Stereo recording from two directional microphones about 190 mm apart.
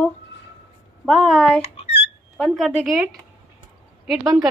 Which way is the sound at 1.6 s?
30° left (ahead or behind).